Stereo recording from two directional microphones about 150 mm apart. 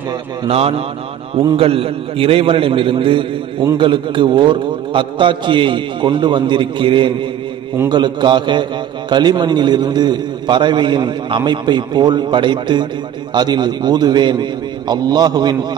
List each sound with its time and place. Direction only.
0.5 s a man's voice: 40° right (ahead or behind)